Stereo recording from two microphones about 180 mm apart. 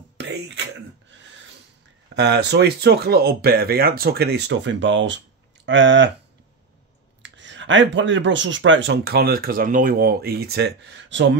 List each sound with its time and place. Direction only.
0.2 s a sound: 75° right (ahead or behind)
2.1 s speech: 75° right (ahead or behind); by 6.0 s 90° right
7.2 s speech: 90° right